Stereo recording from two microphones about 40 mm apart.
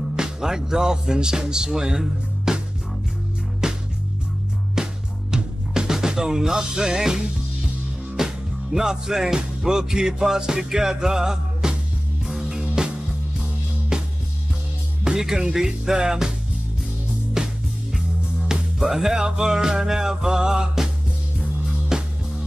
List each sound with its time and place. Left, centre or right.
0.1 s speech: centre
3.6 s music: centre
15.0 s speech: centre
15.5 s music: centre
17.4 s music: centre
18.8 s music: centre